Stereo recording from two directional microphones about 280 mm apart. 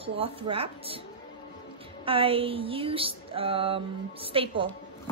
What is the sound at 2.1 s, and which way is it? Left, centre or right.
Speech, centre.